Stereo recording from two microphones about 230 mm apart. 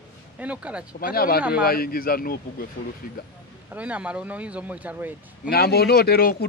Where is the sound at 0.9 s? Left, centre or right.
Left.